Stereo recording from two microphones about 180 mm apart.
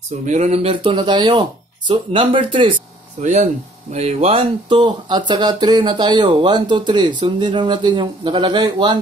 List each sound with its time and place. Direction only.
0.2 s speech: 40° right (ahead or behind)
3.2 s speech: 40° right (ahead or behind); by 9.0 s 25° right (ahead or behind)